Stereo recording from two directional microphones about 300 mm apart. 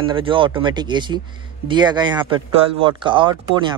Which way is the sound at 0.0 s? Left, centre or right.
Centre.